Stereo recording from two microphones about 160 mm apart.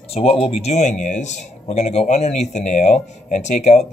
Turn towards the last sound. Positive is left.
turn(degrees=45)  # may be behind; listen again after turning